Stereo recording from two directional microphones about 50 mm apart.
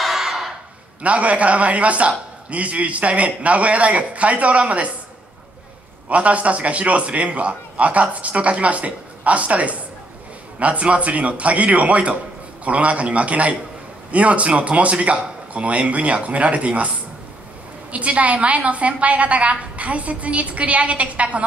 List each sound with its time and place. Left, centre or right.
0.0 s a sound: centre
1.0 s a man's voice: right
6.0 s a man's voice: right
17.9 s a man's voice: right